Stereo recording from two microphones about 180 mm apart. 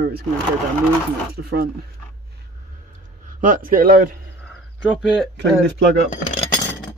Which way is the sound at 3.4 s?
50° right (ahead or behind).